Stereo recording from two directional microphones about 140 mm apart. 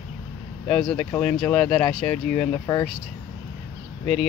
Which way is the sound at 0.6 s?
5° left (ahead or behind).